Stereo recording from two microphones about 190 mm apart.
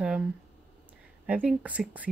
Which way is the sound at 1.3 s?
5° right (ahead or behind).